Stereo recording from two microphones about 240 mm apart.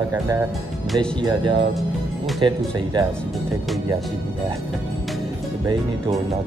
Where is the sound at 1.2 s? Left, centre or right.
Centre.